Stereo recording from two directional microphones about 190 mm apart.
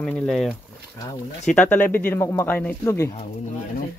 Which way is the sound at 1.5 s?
10° left (ahead or behind).